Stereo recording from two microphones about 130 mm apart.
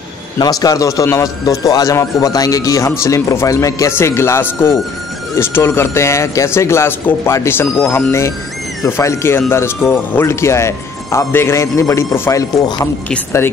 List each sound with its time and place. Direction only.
0.4 s a man's voice: 30° left (ahead or behind)